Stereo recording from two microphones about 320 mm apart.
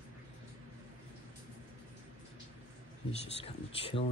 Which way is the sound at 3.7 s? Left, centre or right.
Centre.